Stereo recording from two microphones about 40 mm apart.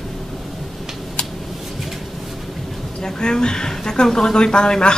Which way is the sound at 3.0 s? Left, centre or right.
Centre.